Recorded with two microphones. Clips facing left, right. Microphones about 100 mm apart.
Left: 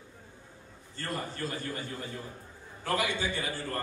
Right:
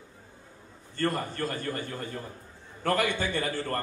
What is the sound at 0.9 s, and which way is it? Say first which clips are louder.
Speech: right 7 dB; 55° right (ahead or behind).